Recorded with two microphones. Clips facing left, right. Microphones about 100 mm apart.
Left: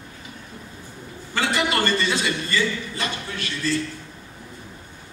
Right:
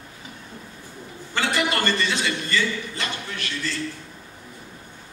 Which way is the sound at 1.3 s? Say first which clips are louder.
Left 1 dB; 20° left (ahead or behind).